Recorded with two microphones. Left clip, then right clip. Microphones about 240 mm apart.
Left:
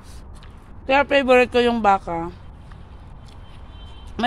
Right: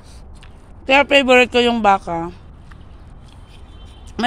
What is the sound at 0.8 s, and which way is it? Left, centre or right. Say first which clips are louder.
Speech: right 4 dB; centre.